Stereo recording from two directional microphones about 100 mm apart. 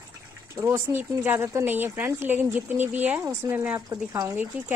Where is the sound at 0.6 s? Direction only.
30° right (ahead or behind).